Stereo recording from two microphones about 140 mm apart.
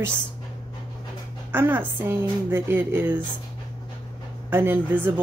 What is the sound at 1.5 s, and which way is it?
A woman's voice, 15° right (ahead or behind).